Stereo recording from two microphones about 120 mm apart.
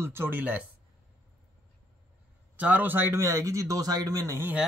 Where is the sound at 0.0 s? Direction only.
20° right (ahead or behind).